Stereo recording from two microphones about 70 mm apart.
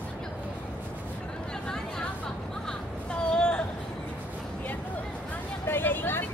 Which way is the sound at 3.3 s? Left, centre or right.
Centre.